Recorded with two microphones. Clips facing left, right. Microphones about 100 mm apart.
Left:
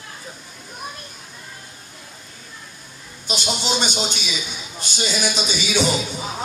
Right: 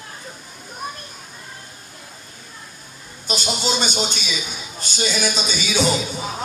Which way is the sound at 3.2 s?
40° right (ahead or behind).